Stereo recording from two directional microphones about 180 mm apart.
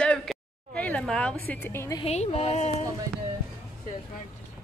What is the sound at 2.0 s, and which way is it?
Speech, 35° left (ahead or behind).